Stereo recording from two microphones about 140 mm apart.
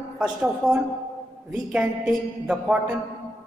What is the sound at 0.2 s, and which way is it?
A woman's voice, 5° right (ahead or behind).